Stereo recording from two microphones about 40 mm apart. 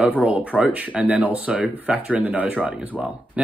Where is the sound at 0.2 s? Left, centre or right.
Right.